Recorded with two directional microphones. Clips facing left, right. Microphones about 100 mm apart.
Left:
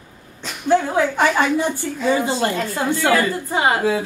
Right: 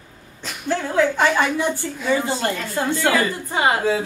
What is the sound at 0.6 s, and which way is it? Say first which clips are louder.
Speech: left 3 dB; 15° left (ahead or behind).